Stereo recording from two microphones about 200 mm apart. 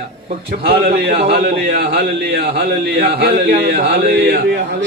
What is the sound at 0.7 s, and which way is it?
Speech, 50° right (ahead or behind).